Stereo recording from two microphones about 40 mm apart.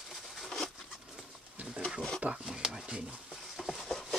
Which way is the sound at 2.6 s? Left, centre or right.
Centre.